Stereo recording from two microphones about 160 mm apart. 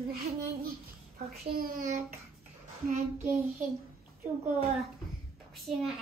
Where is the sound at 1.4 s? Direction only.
65° right (ahead or behind).